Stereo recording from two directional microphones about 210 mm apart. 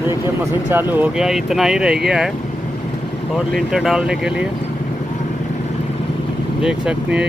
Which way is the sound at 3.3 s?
Centre (ahead or behind).